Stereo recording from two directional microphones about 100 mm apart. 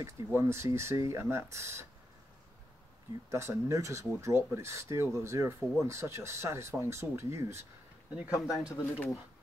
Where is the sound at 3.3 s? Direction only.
30° right (ahead or behind).